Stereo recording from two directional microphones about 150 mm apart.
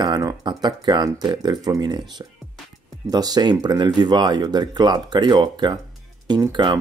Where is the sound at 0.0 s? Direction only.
25° right (ahead or behind).